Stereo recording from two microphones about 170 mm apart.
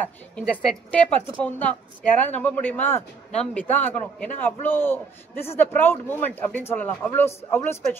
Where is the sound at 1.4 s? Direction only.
10° left (ahead or behind).